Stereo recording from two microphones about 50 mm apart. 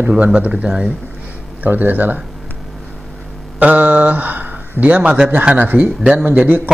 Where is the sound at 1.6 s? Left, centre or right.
Right.